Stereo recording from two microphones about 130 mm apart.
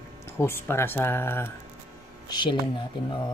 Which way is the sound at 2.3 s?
35° left (ahead or behind).